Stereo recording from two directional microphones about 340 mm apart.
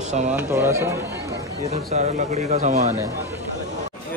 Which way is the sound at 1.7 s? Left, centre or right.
Right.